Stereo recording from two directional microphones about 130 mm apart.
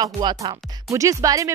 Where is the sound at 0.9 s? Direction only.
25° right (ahead or behind).